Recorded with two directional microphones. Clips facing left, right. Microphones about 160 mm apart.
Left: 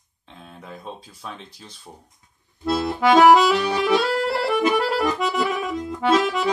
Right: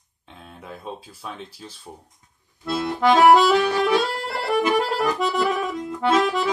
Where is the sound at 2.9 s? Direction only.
Centre (ahead or behind).